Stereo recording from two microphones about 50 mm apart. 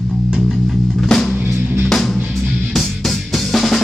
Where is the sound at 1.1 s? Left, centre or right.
Centre.